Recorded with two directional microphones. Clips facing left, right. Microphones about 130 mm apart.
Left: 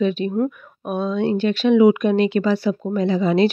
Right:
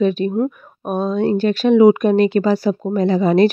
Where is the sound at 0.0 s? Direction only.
40° right (ahead or behind).